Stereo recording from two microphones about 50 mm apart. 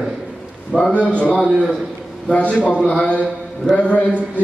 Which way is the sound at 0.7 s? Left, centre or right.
Centre.